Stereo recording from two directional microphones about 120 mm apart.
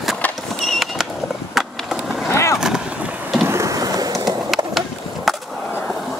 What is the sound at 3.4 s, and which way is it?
Skateboard, 25° right (ahead or behind).